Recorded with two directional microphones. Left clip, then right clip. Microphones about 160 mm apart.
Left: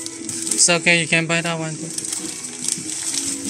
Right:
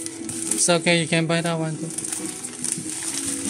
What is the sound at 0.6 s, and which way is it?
Speech, 15° right (ahead or behind).